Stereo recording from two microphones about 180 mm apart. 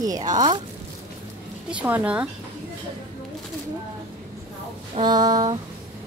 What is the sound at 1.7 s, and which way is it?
Speech, 10° right (ahead or behind).